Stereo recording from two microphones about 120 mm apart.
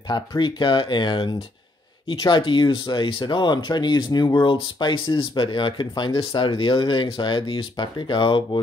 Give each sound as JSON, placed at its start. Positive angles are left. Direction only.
{"t": 0.1, "sound": "speech", "side_deg": 40}